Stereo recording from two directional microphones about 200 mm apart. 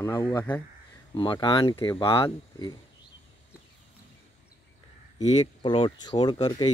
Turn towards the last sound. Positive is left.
turn(degrees=20)  # may be behind; listen again after turning